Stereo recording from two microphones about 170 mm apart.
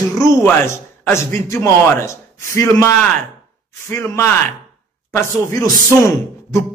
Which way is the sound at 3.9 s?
15° left (ahead or behind).